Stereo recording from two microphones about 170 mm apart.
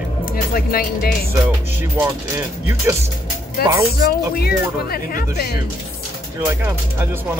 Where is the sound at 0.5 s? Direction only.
60° left (ahead or behind).